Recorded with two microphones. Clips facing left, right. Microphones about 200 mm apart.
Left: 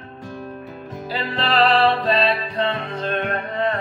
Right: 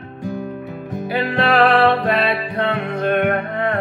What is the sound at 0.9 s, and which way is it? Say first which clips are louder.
Music: right 6 dB; 65° right (ahead or behind).